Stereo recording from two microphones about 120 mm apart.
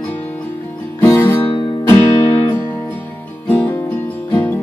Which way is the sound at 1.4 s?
40° left (ahead or behind).